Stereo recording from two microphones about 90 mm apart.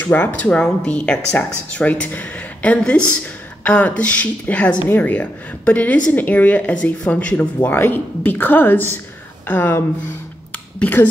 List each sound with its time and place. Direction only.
0.0 s a woman's voice: 20° left (ahead or behind)
10.8 s speech: 20° left (ahead or behind)